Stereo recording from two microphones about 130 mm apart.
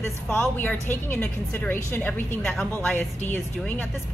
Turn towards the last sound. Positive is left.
turn(degrees=15)  # may be behind; listen again after turning